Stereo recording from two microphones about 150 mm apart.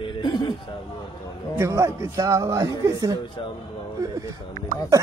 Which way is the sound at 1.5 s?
20° right (ahead or behind).